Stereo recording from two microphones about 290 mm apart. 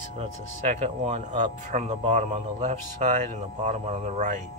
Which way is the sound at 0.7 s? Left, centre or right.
Right.